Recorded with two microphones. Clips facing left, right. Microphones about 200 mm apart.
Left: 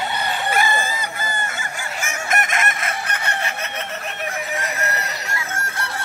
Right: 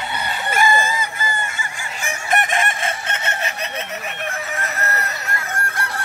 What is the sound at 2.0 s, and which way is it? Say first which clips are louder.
Chicken: right 3 dB; 35° right (ahead or behind).